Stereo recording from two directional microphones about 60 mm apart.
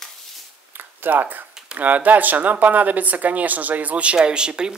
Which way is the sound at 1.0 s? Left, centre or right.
Right.